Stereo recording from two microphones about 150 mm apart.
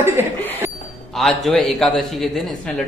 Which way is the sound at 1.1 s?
Centre (ahead or behind).